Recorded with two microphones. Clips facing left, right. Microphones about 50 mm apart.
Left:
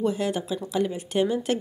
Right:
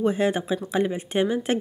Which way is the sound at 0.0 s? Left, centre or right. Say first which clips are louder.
Right 3 dB; right.